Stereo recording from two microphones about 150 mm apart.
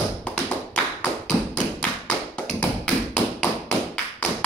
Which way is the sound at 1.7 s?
5° left (ahead or behind).